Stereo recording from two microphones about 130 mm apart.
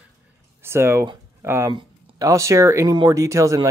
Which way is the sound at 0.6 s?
20° right (ahead or behind).